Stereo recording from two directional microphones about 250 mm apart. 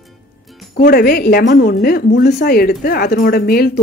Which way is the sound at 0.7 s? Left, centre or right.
Left.